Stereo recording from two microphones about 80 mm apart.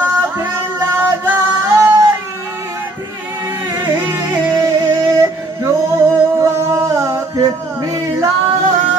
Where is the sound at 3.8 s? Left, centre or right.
Right.